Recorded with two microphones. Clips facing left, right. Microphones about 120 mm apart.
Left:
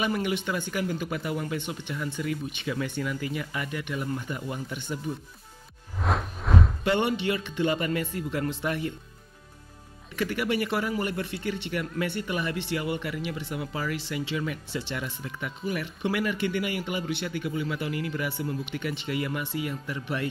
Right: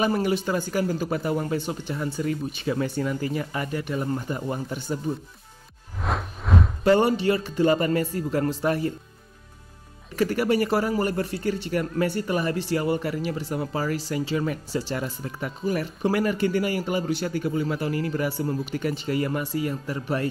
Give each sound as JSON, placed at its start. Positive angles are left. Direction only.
{"t": 0.0, "sound": "speech", "side_deg": -35}
{"t": 5.9, "sound": "music", "side_deg": 0}
{"t": 6.8, "sound": "speech", "side_deg": -40}
{"t": 10.1, "sound": "speech", "side_deg": -40}